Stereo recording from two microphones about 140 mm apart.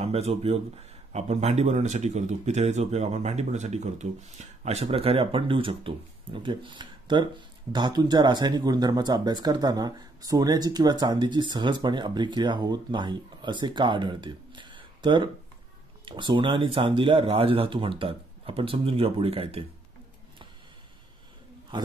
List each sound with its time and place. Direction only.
0.0 s speech: 45° right (ahead or behind)